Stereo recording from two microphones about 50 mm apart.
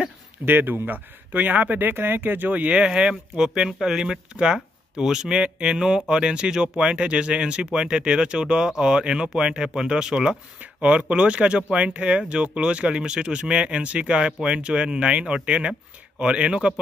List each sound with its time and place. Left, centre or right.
0.5 s speech: right
2.8 s speech: centre